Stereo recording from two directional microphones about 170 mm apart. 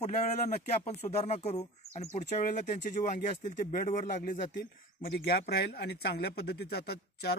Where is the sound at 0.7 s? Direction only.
40° left (ahead or behind).